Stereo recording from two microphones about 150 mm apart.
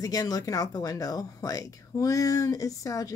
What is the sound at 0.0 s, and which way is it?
Speech, 25° left (ahead or behind).